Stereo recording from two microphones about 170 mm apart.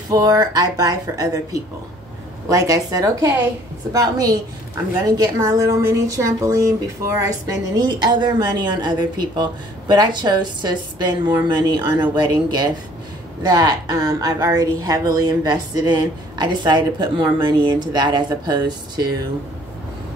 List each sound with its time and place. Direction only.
0.1 s a woman's voice: 20° right (ahead or behind)